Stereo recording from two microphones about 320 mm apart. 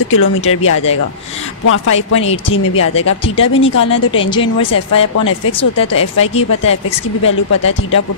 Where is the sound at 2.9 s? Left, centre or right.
Centre.